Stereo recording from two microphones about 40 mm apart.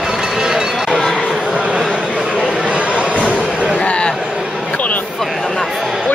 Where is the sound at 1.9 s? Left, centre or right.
Right.